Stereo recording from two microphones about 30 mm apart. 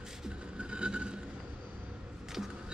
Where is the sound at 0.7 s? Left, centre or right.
Right.